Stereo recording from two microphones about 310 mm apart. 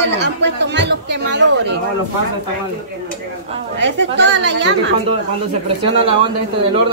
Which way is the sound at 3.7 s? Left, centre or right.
Right.